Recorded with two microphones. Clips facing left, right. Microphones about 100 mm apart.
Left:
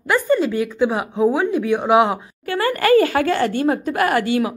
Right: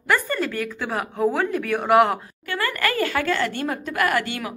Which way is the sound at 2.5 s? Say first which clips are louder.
Left 9 dB; 30° left (ahead or behind).